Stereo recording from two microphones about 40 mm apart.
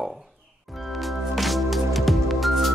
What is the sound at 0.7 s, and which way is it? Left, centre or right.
Music, centre.